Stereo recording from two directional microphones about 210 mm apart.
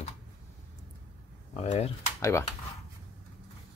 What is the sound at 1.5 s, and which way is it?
Speech, 30° left (ahead or behind).